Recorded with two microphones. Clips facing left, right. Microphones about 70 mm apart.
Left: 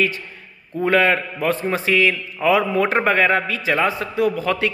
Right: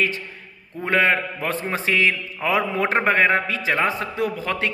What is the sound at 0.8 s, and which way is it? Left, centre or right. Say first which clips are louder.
A man's voice: left 2 dB; right.